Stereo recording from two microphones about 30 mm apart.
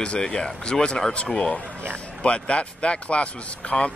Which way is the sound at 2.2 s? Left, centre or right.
Left.